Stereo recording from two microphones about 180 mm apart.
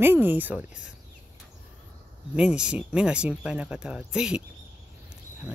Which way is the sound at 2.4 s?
5° right (ahead or behind).